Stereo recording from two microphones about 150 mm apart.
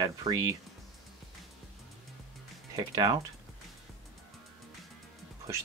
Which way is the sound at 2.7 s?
25° right (ahead or behind).